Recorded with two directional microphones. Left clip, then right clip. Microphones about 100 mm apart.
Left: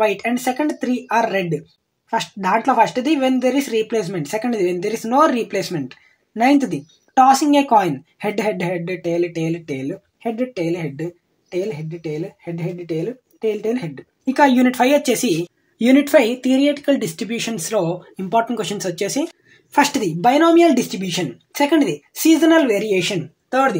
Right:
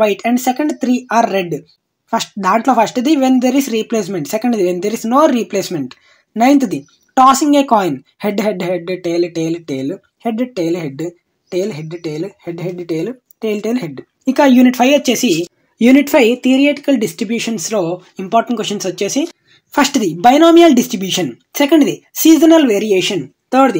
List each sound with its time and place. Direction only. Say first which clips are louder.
0.0 s speech: right 5 dB; 25° right (ahead or behind)
19.7 s speech: right 2 dB; 30° right (ahead or behind)
20.2 s speech: right 6 dB; 45° right (ahead or behind); by 23.8 s 25° right (ahead or behind)